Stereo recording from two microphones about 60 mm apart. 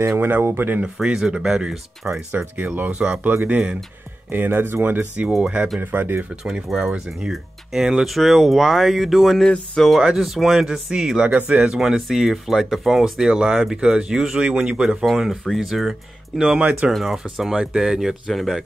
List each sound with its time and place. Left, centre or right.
0.1 s speech: right
1.0 s speech: centre
2.3 s speech: right
2.9 s speech: centre
4.3 s speech: right
5.4 s speech: centre
5.8 s speech: right
6.9 s speech: centre
11.3 s speech: right
15.0 s speech: centre